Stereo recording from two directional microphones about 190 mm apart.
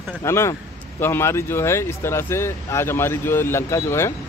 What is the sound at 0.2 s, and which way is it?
Speech, 15° left (ahead or behind).